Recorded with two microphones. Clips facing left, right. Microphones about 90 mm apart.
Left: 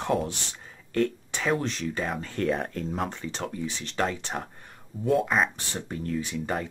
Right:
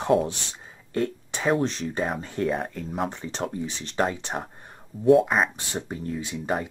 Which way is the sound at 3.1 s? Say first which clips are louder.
Right 3 dB; 20° right (ahead or behind).